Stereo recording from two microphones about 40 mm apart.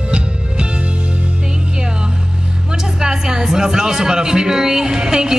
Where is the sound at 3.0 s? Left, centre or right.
Centre.